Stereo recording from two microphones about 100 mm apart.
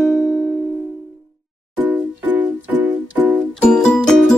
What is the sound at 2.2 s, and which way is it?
Music, 15° right (ahead or behind).